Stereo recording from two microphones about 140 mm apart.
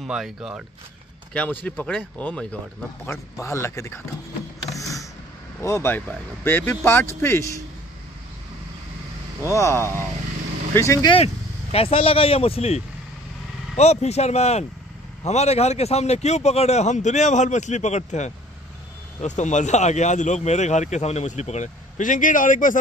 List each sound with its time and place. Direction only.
0.0 s speech: centre (ahead or behind)
1.3 s speech: 10° left (ahead or behind)
3.1 s speech: 20° left (ahead or behind)
4.6 s a sound: 25° left (ahead or behind)
5.6 s speech: 20° left (ahead or behind)
9.5 s speech: 20° left (ahead or behind)
11.7 s speech: 45° left (ahead or behind); by 22.8 s 70° left (ahead or behind)